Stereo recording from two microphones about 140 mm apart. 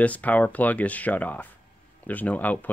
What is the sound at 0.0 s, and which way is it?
Speech, 10° left (ahead or behind).